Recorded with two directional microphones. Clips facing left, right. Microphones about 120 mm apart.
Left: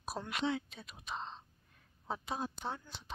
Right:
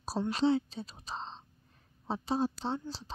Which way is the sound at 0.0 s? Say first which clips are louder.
Right 8 dB; 30° right (ahead or behind).